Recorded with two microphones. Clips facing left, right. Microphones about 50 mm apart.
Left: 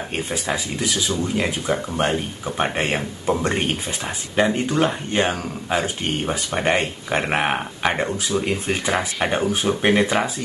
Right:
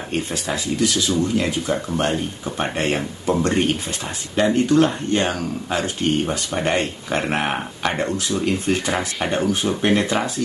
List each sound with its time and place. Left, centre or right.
0.1 s speech: centre